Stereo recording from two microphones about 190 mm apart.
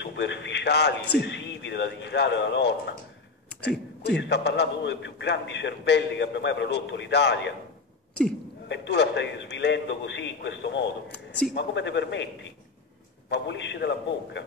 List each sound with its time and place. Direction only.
0.0 s a man's voice: 70° left (ahead or behind)
8.6 s a man's voice: 70° left (ahead or behind)
11.1 s speech: 5° left (ahead or behind)
11.5 s a man's voice: 70° left (ahead or behind)